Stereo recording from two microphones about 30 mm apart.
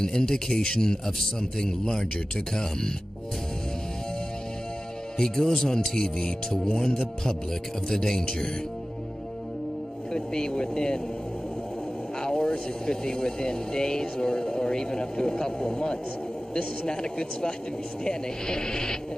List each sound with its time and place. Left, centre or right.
0.0 s speech: left
5.1 s speech: centre
10.1 s speech: left
12.2 s speech: left